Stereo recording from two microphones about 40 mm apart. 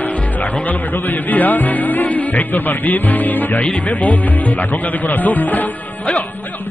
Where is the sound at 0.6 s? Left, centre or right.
Left.